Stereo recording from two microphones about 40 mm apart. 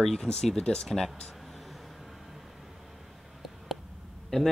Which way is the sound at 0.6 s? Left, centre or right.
Left.